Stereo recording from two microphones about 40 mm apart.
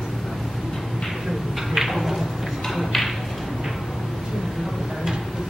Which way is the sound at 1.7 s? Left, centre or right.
Centre.